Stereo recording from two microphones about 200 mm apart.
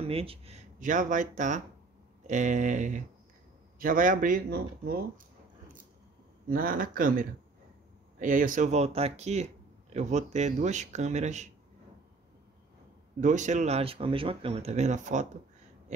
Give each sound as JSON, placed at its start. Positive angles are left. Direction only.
{"t": 0.0, "sound": "speech", "side_deg": -30}
{"t": 6.4, "sound": "speech", "side_deg": -45}
{"t": 13.2, "sound": "speech", "side_deg": -35}